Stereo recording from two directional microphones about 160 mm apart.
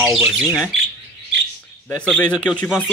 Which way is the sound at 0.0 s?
5° right (ahead or behind).